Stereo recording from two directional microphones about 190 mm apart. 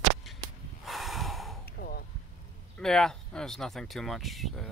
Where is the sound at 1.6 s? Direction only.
50° left (ahead or behind).